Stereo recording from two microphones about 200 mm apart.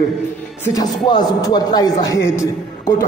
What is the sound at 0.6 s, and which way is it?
Speech, 20° left (ahead or behind).